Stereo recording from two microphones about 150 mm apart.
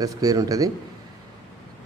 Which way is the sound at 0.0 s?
25° right (ahead or behind).